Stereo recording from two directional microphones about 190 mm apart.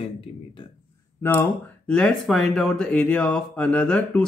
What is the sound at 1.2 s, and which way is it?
Speech, 10° left (ahead or behind).